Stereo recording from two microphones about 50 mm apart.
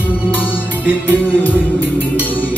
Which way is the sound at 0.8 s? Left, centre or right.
Right.